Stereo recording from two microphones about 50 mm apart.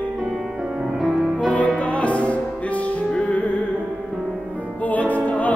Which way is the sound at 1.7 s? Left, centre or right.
Left.